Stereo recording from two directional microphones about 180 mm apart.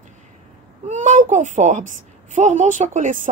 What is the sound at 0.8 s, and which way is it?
A woman's voice, 45° right (ahead or behind).